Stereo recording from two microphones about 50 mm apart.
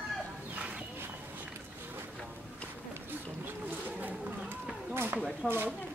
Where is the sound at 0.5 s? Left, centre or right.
Right.